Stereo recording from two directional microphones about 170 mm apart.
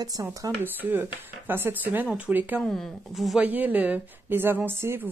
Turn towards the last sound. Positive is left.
turn(degrees=-15)  # may be behind; listen again after turning